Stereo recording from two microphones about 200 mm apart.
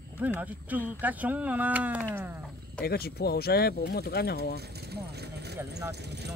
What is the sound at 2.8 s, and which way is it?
Speech, 50° left (ahead or behind).